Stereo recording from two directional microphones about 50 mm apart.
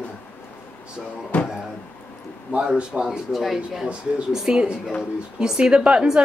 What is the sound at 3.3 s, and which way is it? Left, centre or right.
A woman's voice, centre.